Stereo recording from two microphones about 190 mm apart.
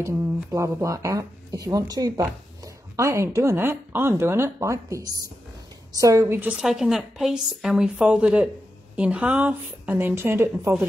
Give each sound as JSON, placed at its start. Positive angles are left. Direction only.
{"t": 0.0, "sound": "a woman's voice", "side_deg": -15}